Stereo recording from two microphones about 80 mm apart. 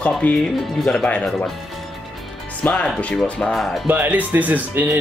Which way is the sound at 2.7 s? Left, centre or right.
Centre.